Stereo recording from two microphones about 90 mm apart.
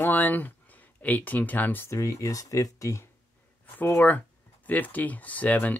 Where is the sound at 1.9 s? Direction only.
35° left (ahead or behind).